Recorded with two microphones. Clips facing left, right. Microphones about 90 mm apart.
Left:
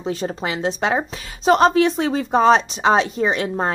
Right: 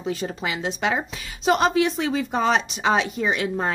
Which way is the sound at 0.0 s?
35° left (ahead or behind).